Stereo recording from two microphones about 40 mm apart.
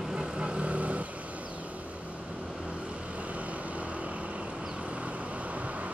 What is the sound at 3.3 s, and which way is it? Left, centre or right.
Vehicle, right.